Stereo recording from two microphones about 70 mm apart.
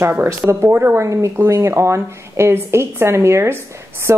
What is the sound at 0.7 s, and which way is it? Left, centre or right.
A woman's voice, right.